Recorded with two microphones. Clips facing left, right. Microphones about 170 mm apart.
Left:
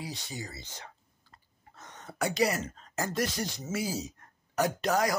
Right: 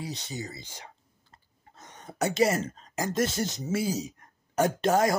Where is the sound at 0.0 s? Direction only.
20° right (ahead or behind).